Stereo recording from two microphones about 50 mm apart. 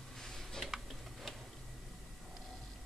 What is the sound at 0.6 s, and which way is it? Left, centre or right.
Tick-tock, centre.